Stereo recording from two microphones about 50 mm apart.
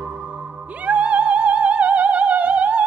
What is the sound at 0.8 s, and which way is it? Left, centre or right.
Opera, right.